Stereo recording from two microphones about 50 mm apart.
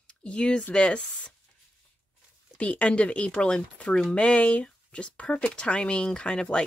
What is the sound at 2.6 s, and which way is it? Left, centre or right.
Speech, left.